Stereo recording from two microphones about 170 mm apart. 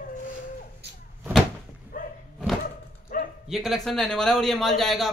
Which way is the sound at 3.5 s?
Centre (ahead or behind).